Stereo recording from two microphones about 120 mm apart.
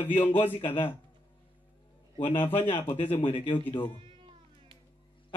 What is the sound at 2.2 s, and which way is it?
A man's voice, 50° left (ahead or behind).